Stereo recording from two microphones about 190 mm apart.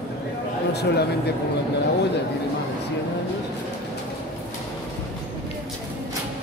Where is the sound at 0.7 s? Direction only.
60° left (ahead or behind).